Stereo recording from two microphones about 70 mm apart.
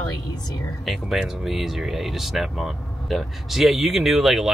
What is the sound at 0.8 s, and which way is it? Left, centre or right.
Speech, centre.